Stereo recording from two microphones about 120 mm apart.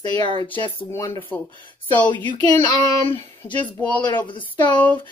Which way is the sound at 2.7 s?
30° left (ahead or behind).